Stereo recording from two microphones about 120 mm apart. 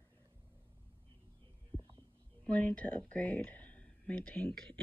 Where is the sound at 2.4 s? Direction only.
10° left (ahead or behind).